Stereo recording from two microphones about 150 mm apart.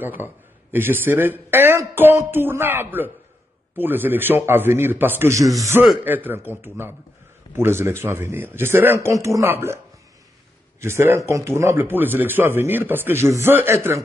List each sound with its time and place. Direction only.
0.0 s speech: 15° right (ahead or behind)
10.8 s speech: 15° right (ahead or behind)